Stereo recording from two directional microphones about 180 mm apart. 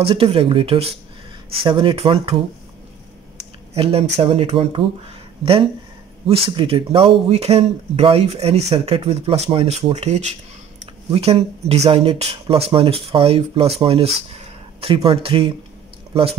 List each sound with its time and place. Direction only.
0.0 s speech: 30° right (ahead or behind)
3.7 s speech: 35° right (ahead or behind)
6.2 s speech: 30° right (ahead or behind)